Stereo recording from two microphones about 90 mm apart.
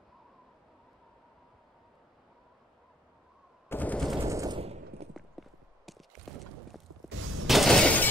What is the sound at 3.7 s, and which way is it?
Machine gun, 20° left (ahead or behind).